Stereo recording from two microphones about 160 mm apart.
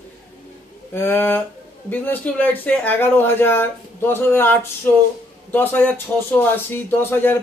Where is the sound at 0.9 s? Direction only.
15° left (ahead or behind).